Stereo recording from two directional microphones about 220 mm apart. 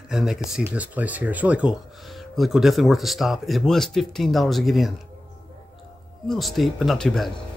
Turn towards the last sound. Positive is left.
turn(degrees=0)  # may be behind; listen again after turning